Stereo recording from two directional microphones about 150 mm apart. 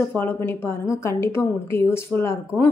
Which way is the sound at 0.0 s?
15° left (ahead or behind).